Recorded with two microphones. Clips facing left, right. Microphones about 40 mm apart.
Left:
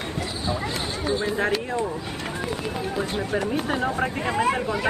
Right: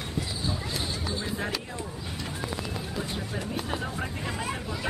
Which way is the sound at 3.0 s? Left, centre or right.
Left.